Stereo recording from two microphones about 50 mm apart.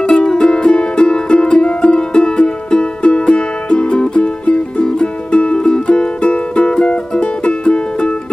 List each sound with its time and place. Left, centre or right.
0.0 s music: centre